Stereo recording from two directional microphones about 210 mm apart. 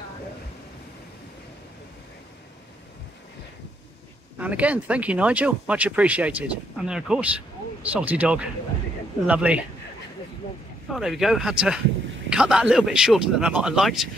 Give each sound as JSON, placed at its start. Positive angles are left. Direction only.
{"t": 4.4, "sound": "speech", "side_deg": -5}
{"t": 10.9, "sound": "speech", "side_deg": 0}